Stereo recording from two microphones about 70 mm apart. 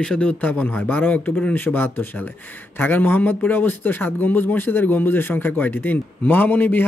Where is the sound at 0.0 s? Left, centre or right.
Centre.